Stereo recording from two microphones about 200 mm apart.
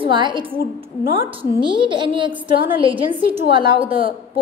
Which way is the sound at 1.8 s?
25° right (ahead or behind).